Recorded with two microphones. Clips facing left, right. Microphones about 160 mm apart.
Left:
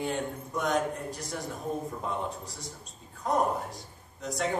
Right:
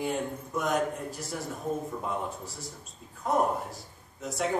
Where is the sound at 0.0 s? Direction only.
5° right (ahead or behind).